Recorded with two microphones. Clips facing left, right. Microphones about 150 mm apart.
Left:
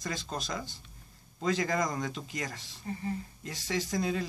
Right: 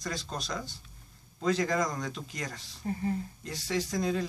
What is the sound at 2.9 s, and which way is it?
Speech, 55° right (ahead or behind).